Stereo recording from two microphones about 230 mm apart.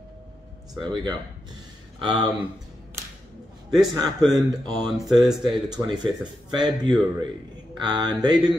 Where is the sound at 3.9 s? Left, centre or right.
Centre.